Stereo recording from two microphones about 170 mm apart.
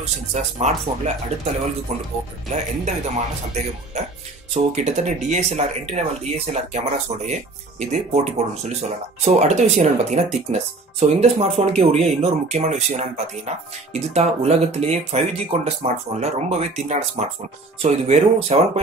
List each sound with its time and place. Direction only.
0.0 s speech: 40° right (ahead or behind)
2.5 s speech: 45° right (ahead or behind)
4.6 s speech: 40° right (ahead or behind)